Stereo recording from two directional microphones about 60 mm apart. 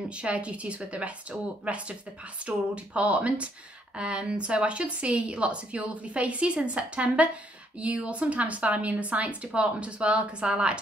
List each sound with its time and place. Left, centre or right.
0.2 s a woman's voice: centre